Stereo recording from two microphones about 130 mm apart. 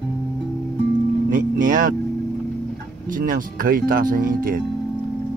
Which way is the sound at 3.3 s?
90° right.